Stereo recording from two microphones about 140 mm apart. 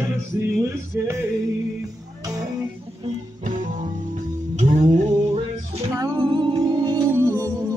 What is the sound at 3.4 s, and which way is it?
Music, 70° right (ahead or behind).